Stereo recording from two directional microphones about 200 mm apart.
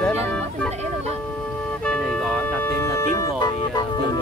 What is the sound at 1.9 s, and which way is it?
Music, 5° left (ahead or behind).